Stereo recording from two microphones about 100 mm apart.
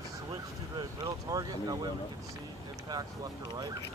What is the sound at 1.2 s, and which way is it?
Speech, 40° right (ahead or behind).